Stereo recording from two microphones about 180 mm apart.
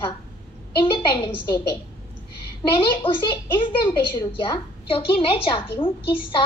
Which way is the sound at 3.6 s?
25° left (ahead or behind).